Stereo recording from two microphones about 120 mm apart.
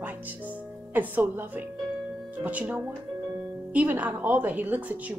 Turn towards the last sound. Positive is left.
turn(degrees=-15)  # may be behind; listen again after turning